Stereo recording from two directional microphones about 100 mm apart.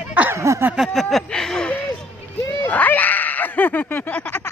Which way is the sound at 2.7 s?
15° left (ahead or behind).